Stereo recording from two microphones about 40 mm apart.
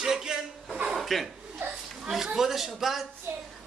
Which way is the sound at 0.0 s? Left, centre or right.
Centre.